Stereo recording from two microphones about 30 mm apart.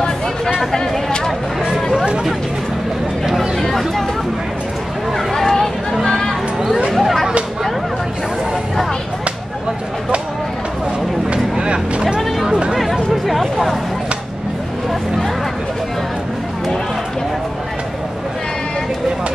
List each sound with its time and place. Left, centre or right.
5.1 s speech: centre
6.0 s a sound: left
6.9 s speech: centre
12.2 s music: centre
13.1 s speech: centre